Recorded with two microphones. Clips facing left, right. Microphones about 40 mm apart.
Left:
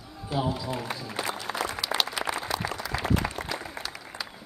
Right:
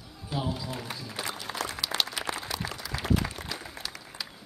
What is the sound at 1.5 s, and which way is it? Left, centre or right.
Applause, centre.